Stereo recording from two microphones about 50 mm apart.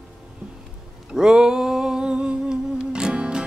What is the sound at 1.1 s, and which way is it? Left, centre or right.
Humming, centre.